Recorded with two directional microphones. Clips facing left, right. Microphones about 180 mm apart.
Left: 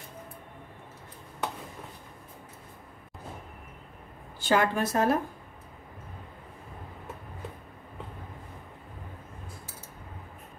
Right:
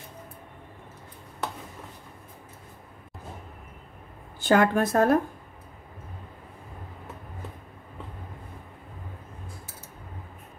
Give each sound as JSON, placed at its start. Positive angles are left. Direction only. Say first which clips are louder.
{"t": 4.4, "sound": "a woman's voice", "louder": "right 4 dB", "side_deg": -50}